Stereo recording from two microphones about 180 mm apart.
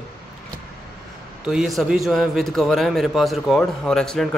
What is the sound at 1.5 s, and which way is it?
A man's voice, centre (ahead or behind).